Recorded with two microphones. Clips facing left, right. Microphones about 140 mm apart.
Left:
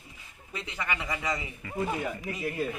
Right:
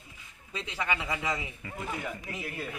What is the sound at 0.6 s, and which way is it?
Speech, 10° right (ahead or behind).